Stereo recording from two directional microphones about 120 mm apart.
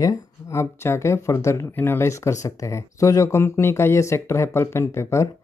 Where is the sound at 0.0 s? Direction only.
25° left (ahead or behind).